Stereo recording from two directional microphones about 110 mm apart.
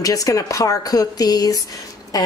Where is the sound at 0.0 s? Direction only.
30° left (ahead or behind).